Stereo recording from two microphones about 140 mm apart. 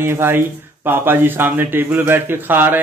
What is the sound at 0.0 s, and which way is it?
A man's voice, 15° right (ahead or behind).